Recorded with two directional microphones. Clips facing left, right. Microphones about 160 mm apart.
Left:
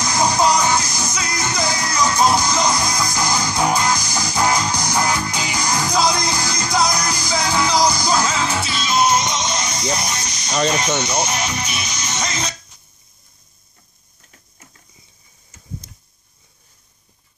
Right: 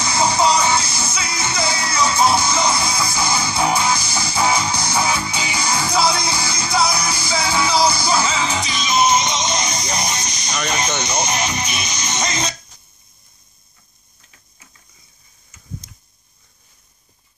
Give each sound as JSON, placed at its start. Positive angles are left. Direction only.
{"t": 0.0, "sound": "music", "side_deg": -5}
{"t": 9.9, "sound": "a sound", "side_deg": -20}
{"t": 11.2, "sound": "speech", "side_deg": -15}